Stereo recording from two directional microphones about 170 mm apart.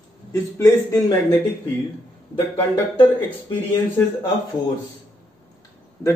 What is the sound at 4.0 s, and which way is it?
Speech, 15° left (ahead or behind).